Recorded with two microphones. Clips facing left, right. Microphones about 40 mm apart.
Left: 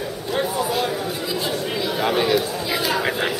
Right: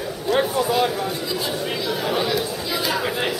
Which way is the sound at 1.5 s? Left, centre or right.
Centre.